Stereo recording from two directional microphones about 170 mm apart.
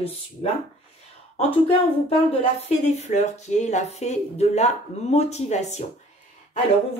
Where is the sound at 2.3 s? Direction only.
40° left (ahead or behind).